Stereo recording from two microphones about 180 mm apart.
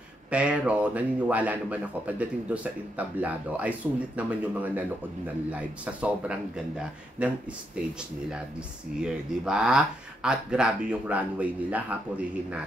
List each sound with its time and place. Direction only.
0.3 s speech: 5° right (ahead or behind)
9.0 s speech: 5° right (ahead or behind)